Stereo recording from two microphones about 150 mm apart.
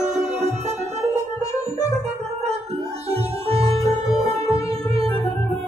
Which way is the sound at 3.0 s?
40° right (ahead or behind).